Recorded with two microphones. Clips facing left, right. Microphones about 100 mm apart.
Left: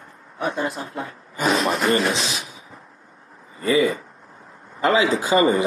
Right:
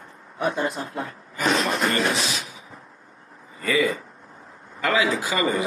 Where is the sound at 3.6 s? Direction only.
25° left (ahead or behind).